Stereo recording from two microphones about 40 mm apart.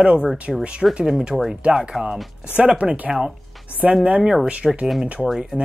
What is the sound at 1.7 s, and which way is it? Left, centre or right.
A man's voice, centre.